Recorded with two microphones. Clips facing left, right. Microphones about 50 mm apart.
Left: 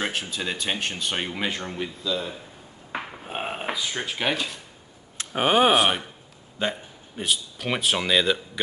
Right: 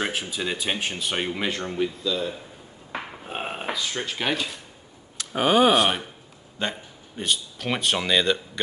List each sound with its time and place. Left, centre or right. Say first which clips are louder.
0.0 s speech: right 1 dB; centre
5.3 s speech: right 1 dB; left
5.7 s speech: even; centre